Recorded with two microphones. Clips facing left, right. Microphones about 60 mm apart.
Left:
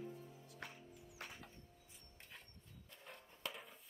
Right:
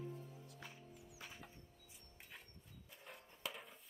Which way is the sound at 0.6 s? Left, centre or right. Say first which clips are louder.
Left 5 dB; left.